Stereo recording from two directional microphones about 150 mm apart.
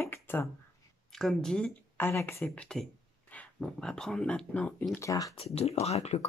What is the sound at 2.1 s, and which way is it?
Speech, 15° left (ahead or behind).